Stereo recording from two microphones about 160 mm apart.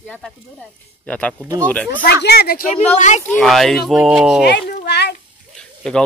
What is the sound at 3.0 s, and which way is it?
Speech, 50° left (ahead or behind).